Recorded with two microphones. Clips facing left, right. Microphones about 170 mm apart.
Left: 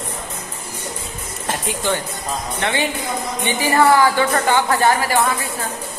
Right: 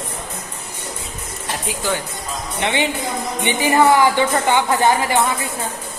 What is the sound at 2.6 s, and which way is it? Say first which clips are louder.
Speech: right 2 dB; 20° right (ahead or behind).